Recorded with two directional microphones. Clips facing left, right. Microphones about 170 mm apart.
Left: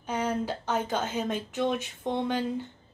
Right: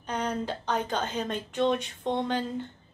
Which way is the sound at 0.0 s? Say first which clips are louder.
Left 1 dB; 5° left (ahead or behind).